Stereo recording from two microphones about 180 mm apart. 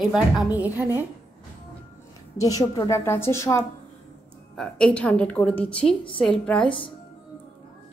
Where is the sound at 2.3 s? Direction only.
20° left (ahead or behind).